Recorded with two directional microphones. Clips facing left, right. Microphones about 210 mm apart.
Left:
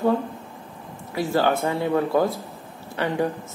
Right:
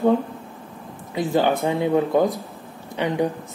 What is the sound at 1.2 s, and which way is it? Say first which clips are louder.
Speech: right 1 dB; 20° right (ahead or behind).